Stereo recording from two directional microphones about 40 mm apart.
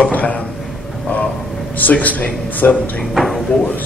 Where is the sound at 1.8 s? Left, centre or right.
Left.